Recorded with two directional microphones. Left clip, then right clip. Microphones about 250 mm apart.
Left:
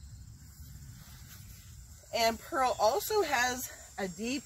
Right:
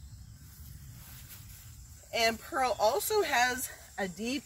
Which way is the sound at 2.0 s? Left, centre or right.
Centre.